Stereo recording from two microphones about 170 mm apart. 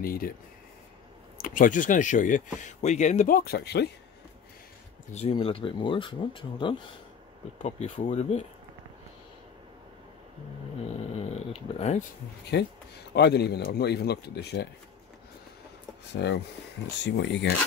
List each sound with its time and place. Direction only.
0.0 s speech: 60° left (ahead or behind)
1.4 s speech: 50° left (ahead or behind)
3.3 s speech: 70° left (ahead or behind)
5.1 s speech: 35° left (ahead or behind)
7.6 s speech: 40° left (ahead or behind)
11.1 s speech: 40° left (ahead or behind)
12.5 s speech: 75° left (ahead or behind)
16.1 s speech: 90° left